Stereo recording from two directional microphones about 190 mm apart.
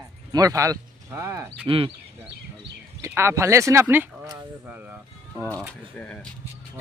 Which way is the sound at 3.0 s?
15° right (ahead or behind).